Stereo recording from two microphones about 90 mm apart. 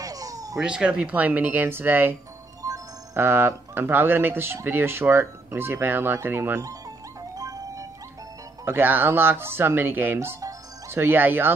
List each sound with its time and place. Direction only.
0.0 s a sound: 40° right (ahead or behind)
0.6 s speech: 10° right (ahead or behind)
2.6 s music: 40° right (ahead or behind)
3.2 s speech: 25° right (ahead or behind)
6.6 s music: 40° right (ahead or behind)
8.6 s speech: 25° right (ahead or behind)